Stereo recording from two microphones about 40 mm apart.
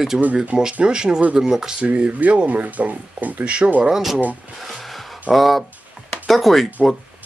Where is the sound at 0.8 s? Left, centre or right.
Centre.